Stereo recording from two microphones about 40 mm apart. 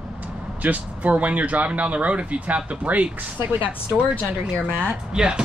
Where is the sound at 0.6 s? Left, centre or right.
Right.